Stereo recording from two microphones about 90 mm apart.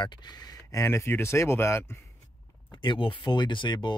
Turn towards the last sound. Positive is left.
turn(degrees=60)  # may be behind; listen again after turning